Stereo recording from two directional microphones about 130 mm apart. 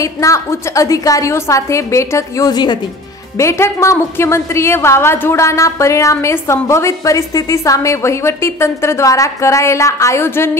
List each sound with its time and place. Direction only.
0.0 s a woman's voice: 25° left (ahead or behind)
3.3 s a woman's voice: 20° left (ahead or behind)